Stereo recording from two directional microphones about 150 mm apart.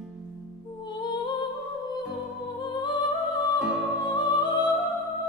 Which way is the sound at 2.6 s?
30° left (ahead or behind).